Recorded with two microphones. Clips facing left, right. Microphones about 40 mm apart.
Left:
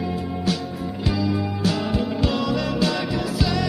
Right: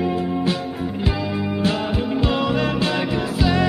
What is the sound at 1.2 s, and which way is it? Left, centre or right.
Music, right.